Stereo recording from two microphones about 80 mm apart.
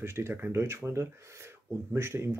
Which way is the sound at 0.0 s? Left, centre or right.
Right.